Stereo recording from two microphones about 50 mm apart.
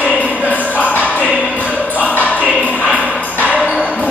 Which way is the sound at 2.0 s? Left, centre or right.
Left.